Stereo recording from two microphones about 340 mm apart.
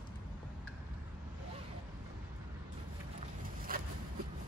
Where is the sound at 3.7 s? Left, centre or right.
Right.